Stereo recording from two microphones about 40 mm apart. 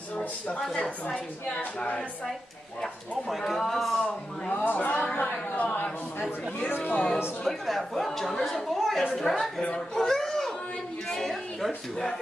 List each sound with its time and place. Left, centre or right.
0.7 s a woman's voice: left
1.6 s speech: left
3.3 s speech: centre
4.5 s speech: left
5.2 s a sound: left
6.7 s speech: left
7.4 s speech: centre
8.6 s a sound: centre
9.1 s speech: centre
9.9 s a sound: centre